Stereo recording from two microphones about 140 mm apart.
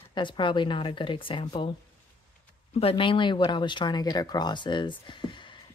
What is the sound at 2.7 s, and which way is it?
Speech, 40° left (ahead or behind).